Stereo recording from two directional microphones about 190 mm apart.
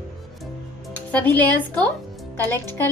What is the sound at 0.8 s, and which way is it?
Speech, 10° left (ahead or behind).